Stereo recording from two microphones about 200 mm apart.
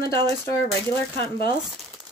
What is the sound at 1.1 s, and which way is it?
Speech, 50° left (ahead or behind).